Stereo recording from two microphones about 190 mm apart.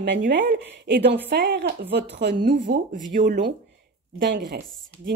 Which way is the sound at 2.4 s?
45° right (ahead or behind).